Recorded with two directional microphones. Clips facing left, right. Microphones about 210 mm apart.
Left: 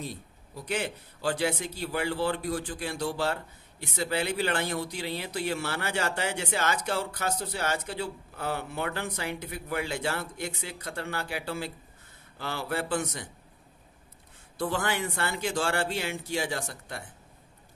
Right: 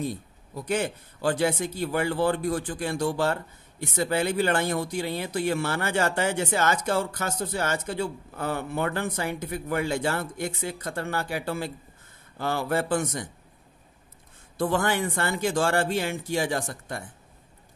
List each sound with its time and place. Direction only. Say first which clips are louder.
0.6 s speech: right 5 dB; 45° right (ahead or behind)
14.6 s speech: right 5 dB; 45° right (ahead or behind)